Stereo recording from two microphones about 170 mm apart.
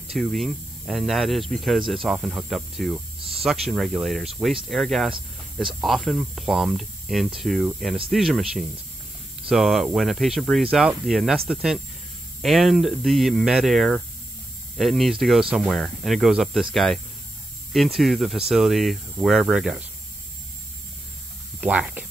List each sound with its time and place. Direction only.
0.1 s speech: centre (ahead or behind)
5.1 s speech: 30° right (ahead or behind)
5.8 s speech: centre (ahead or behind)
21.5 s speech: 5° right (ahead or behind)